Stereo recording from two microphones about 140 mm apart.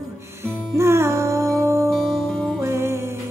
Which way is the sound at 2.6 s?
20° right (ahead or behind).